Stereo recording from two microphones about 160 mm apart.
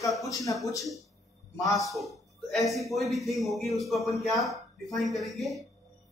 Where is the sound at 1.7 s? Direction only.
Centre (ahead or behind).